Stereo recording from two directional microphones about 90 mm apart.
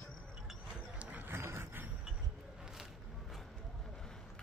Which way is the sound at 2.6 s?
5° right (ahead or behind).